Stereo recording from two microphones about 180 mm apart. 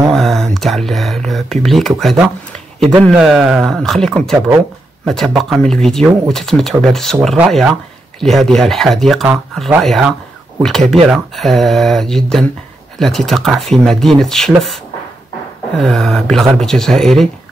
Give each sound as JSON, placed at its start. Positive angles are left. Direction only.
{"t": 0.1, "sound": "speech", "side_deg": 0}
{"t": 15.8, "sound": "speech", "side_deg": 0}